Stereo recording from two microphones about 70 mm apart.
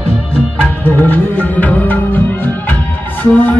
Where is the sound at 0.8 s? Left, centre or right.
Left.